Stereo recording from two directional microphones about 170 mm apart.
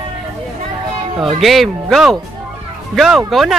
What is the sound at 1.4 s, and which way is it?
Speech, centre (ahead or behind).